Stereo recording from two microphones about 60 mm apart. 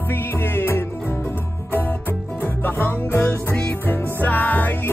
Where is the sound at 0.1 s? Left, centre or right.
Left.